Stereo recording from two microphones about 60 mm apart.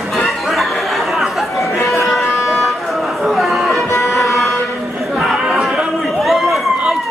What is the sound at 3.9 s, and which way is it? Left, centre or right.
Music, left.